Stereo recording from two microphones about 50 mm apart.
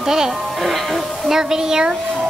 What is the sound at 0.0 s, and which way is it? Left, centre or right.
A woman's voice, centre.